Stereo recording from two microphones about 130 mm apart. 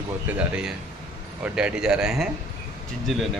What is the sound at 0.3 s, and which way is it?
Speech, 10° right (ahead or behind).